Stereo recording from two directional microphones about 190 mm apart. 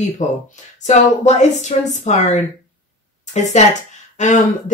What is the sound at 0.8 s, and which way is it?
A woman's voice, 40° left (ahead or behind).